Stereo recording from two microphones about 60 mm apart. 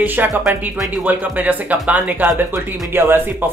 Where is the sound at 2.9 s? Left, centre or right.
Right.